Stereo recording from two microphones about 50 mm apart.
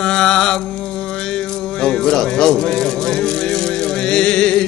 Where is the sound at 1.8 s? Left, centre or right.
Centre.